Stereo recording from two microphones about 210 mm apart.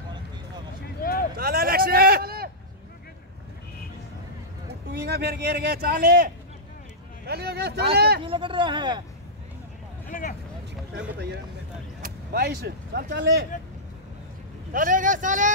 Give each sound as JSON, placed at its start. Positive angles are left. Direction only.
{"t": 1.3, "sound": "vehicle", "side_deg": -45}
{"t": 4.9, "sound": "speech", "side_deg": -50}
{"t": 8.2, "sound": "speech", "side_deg": -25}
{"t": 10.0, "sound": "vehicle", "side_deg": 40}
{"t": 10.7, "sound": "speech", "side_deg": -55}
{"t": 14.7, "sound": "speech", "side_deg": -40}